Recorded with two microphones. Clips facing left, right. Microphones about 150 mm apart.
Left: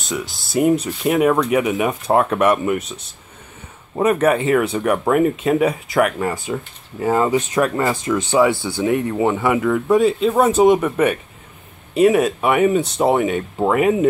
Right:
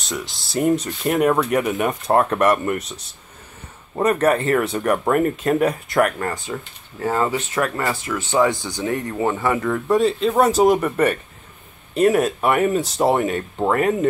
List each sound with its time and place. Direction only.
0.0 s speech: centre (ahead or behind)